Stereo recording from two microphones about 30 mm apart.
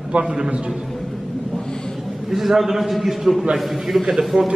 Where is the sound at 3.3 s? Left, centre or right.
Right.